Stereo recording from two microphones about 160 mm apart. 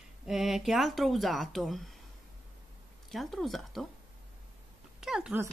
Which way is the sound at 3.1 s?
Centre (ahead or behind).